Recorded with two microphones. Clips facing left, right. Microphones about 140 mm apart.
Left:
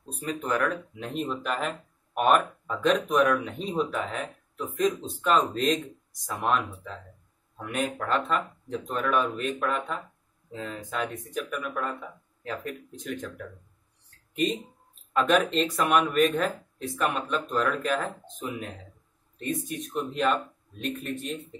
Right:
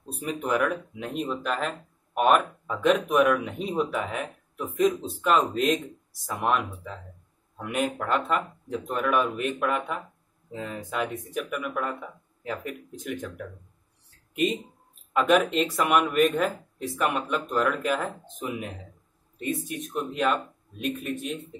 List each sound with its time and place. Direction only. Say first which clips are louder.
0.2 s speech: right 2 dB; 15° right (ahead or behind)
0.6 s speech: right 2 dB; 5° right (ahead or behind)
15.1 s speech: right 2 dB; 10° right (ahead or behind)
19.9 s speech: even; 5° right (ahead or behind)